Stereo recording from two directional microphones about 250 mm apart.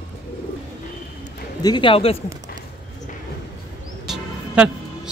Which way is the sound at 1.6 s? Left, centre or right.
Centre.